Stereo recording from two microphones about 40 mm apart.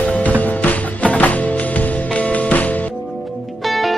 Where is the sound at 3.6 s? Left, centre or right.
Centre.